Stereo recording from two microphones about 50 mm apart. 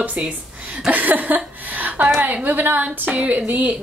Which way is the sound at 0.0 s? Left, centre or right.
Right.